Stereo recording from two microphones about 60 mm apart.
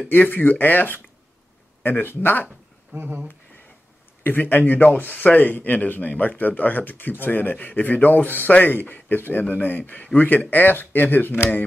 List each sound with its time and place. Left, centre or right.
0.1 s speech: left
2.9 s speech: right
4.2 s speech: left